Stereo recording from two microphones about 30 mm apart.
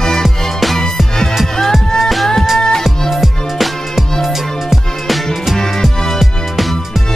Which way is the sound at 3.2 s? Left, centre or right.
Centre.